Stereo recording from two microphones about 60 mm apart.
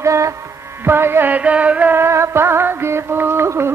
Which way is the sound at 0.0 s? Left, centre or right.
Right.